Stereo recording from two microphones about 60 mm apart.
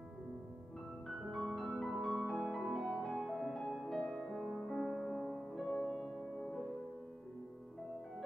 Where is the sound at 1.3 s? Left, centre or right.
Centre.